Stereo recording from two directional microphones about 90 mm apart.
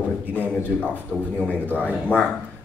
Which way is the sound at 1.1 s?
15° right (ahead or behind).